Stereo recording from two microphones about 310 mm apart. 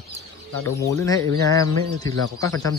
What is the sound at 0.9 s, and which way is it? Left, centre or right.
Speech, centre.